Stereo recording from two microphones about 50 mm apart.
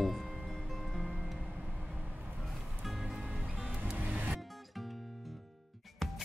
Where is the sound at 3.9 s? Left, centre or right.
Right.